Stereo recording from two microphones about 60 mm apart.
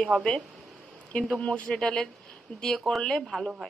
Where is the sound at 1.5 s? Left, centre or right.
Centre.